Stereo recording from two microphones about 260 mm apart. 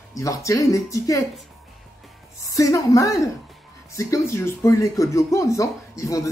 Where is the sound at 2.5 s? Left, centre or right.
Centre.